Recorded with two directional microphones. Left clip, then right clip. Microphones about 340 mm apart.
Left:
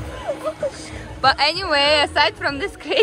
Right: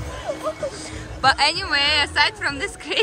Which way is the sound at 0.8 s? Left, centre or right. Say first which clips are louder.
Left 2 dB; centre.